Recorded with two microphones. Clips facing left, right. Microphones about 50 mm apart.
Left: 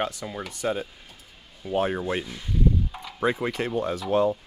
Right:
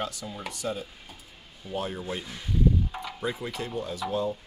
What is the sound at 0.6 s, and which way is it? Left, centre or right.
Speech, left.